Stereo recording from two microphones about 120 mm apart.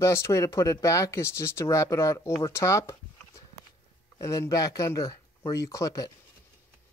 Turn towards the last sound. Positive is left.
turn(degrees=25)  # may be behind; listen again after turning